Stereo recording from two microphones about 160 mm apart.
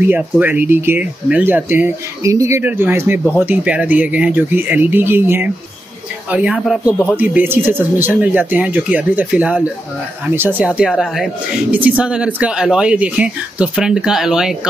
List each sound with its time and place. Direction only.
0.0 s speech: 10° right (ahead or behind)
6.9 s speech: 15° left (ahead or behind)
7.2 s speech: 10° right (ahead or behind)